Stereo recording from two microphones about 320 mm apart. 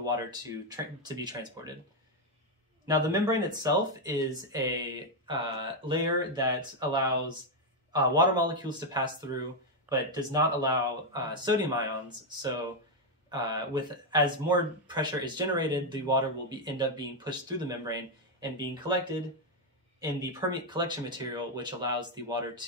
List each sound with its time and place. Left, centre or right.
0.0 s speech: centre
2.9 s speech: centre
13.3 s speech: centre
20.0 s speech: centre